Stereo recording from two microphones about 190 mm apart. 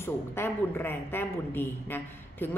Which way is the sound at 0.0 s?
10° left (ahead or behind).